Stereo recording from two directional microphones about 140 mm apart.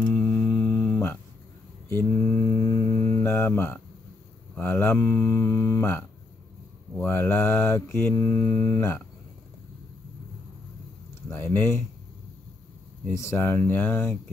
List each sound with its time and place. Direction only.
0.1 s a sound: 15° left (ahead or behind)
1.9 s mantra: 15° left (ahead or behind)
11.2 s mantra: 15° left (ahead or behind)
13.1 s mantra: 20° left (ahead or behind)